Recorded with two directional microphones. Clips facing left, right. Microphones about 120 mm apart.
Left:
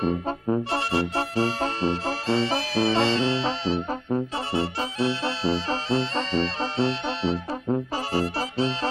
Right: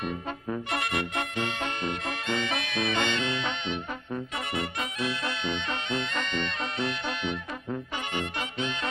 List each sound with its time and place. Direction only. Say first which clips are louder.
0.0 s music: left 8 dB; 30° left (ahead or behind)